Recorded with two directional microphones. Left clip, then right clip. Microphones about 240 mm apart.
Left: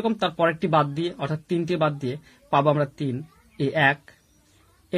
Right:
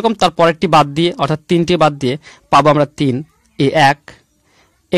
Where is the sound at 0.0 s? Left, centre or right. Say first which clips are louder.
Right 11 dB; right.